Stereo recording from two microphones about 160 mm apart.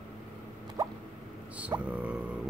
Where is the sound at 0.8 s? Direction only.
20° right (ahead or behind).